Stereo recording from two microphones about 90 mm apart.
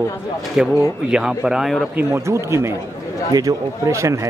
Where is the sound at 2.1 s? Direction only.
35° right (ahead or behind).